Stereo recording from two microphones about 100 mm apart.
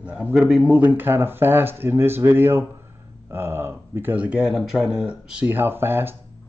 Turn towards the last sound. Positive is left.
turn(degrees=-20)  # may be behind; listen again after turning